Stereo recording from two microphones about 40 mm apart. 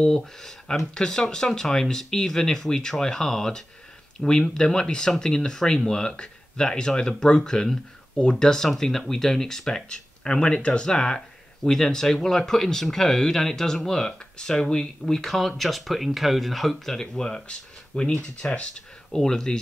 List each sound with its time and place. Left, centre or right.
0.0 s speech: centre